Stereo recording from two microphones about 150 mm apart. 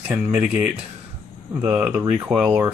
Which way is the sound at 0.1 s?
10° right (ahead or behind).